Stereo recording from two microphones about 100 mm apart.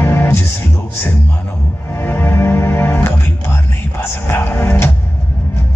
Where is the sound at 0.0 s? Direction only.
20° left (ahead or behind).